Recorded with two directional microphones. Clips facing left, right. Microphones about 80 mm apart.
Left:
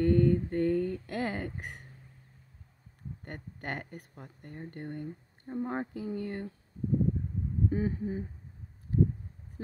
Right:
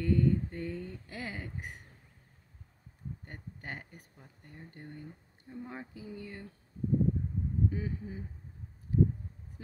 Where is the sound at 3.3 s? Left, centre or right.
Left.